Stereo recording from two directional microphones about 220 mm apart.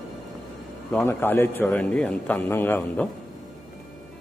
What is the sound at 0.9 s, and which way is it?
A man's voice, 10° left (ahead or behind).